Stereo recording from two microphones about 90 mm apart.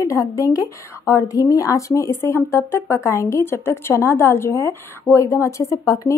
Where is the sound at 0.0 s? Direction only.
35° left (ahead or behind).